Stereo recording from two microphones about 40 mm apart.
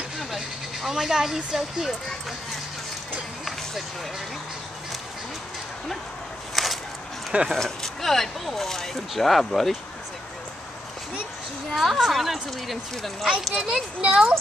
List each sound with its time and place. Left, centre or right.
0.8 s speech: centre
6.5 s a sound: centre
7.5 s speech: centre
11.7 s speech: centre
14.0 s speech: right